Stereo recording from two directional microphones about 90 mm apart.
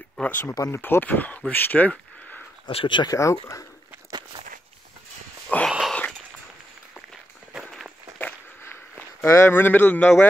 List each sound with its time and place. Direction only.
0.2 s speech: 20° left (ahead or behind)
0.5 s speech: 30° left (ahead or behind)
1.5 s a sound: 20° left (ahead or behind)
2.6 s speech: 65° left (ahead or behind)
3.1 s speech: 35° left (ahead or behind)
5.7 s whispering: 5° right (ahead or behind)
9.2 s speech: 30° left (ahead or behind); by 10.2 s 15° left (ahead or behind)